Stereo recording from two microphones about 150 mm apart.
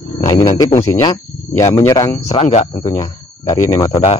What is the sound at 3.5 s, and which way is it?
Speech, 25° left (ahead or behind).